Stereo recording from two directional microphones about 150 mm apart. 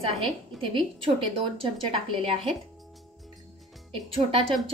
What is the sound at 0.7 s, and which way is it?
A woman's voice, 35° right (ahead or behind).